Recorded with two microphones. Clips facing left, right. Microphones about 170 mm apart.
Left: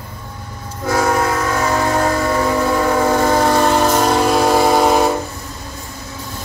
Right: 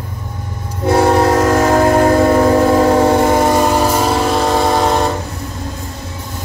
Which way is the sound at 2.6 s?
30° right (ahead or behind).